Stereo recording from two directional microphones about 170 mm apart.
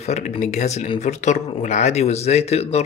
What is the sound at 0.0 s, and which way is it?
Speech, 40° left (ahead or behind).